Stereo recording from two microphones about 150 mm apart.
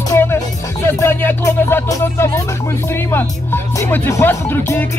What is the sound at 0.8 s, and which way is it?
Speech, 15° left (ahead or behind).